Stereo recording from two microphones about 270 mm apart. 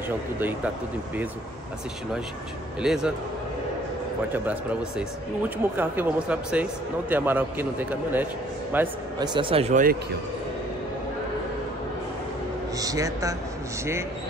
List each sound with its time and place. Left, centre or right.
2.8 s speech: centre
4.3 s a man's voice: centre; by 9.9 s right
12.7 s a man's voice: centre